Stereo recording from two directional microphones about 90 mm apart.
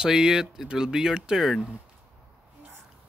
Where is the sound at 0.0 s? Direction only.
5° right (ahead or behind).